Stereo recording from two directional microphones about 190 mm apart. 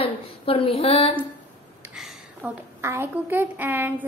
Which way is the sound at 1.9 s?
Centre (ahead or behind).